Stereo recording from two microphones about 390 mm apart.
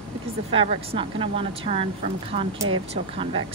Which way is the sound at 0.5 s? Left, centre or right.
Centre.